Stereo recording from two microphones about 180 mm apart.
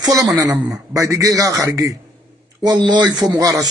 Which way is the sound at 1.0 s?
20° right (ahead or behind).